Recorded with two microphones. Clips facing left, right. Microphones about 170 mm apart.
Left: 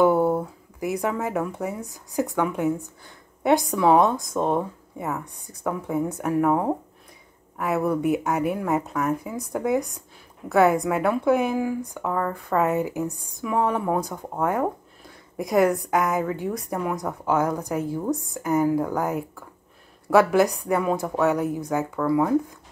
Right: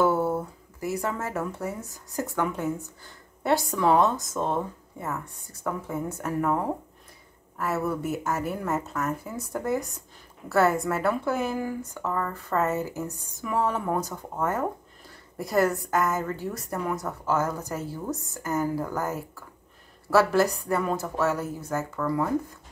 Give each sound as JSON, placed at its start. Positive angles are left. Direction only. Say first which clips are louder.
{"t": 0.0, "sound": "a sound", "louder": "left 4 dB", "side_deg": 15}
{"t": 1.2, "sound": "speech", "louder": "left 4 dB", "side_deg": 15}
{"t": 3.4, "sound": "a woman's voice", "louder": "left 4 dB", "side_deg": 10}